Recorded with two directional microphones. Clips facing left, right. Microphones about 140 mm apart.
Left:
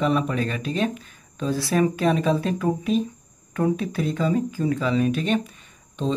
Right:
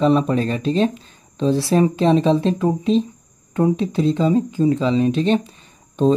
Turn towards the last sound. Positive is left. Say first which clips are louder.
# right 10 dB
turn(degrees=-40)  # may be behind; listen again after turning